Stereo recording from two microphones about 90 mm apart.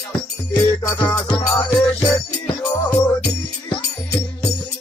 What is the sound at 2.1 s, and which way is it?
Music, 10° left (ahead or behind).